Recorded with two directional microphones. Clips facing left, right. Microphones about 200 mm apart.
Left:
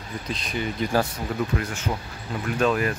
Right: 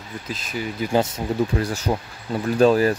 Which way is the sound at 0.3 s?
5° right (ahead or behind).